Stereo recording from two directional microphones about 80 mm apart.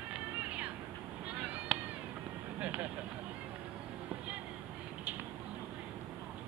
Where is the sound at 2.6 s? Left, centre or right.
Centre.